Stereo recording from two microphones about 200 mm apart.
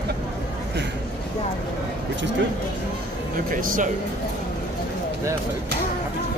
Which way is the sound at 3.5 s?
40° right (ahead or behind).